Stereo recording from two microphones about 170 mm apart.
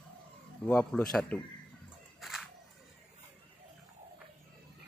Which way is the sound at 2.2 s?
Centre (ahead or behind).